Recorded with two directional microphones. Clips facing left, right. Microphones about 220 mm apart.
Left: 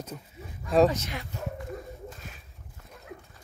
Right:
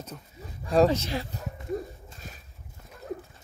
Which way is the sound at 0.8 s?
30° right (ahead or behind).